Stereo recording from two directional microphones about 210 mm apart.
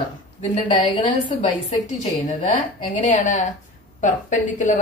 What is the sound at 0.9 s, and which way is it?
Speech, 20° left (ahead or behind).